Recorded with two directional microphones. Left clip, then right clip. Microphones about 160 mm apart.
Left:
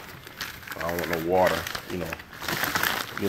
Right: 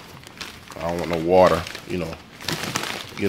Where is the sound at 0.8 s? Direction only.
20° right (ahead or behind).